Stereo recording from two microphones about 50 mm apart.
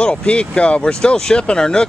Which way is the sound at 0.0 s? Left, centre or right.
Left.